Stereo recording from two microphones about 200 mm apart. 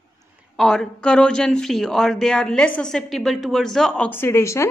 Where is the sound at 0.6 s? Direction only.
5° left (ahead or behind).